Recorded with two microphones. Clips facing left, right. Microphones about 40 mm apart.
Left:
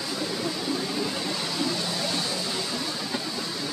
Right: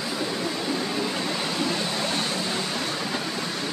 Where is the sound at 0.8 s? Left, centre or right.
Right.